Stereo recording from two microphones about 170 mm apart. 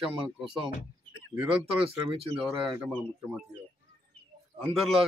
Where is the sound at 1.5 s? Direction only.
35° right (ahead or behind).